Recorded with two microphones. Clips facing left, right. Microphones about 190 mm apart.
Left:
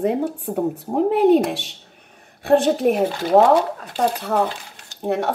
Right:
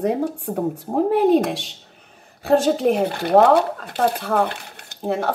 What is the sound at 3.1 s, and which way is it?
Speech, 60° right (ahead or behind).